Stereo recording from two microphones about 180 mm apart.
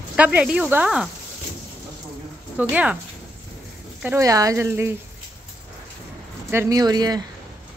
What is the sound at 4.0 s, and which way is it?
Speech, 15° right (ahead or behind).